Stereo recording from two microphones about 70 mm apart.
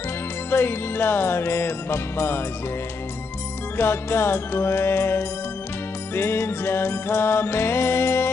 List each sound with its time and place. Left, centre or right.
0.5 s music: left
3.7 s music: left